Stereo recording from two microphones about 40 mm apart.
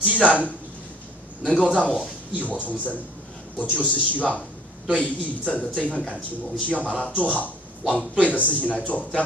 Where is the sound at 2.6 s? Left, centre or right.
Left.